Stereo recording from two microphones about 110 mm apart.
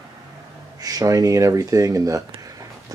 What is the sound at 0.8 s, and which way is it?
Speech, 35° right (ahead or behind).